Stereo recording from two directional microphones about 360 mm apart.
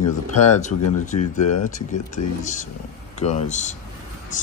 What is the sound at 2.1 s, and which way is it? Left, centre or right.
Speech, left.